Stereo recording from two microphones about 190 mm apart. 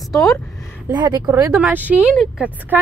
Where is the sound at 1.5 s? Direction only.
5° right (ahead or behind).